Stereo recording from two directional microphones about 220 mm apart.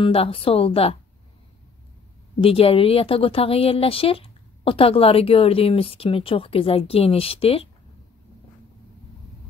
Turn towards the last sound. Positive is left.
turn(degrees=25)  # may be behind; listen again after turning